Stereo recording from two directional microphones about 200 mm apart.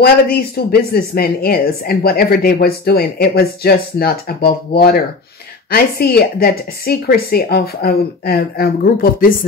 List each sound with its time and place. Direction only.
0.0 s speech: 50° left (ahead or behind)